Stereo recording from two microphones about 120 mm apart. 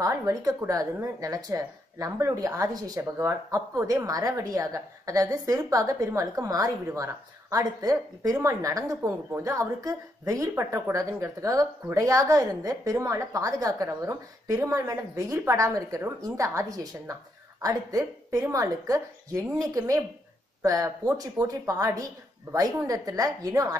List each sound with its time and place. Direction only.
0.0 s a woman's voice: 30° right (ahead or behind)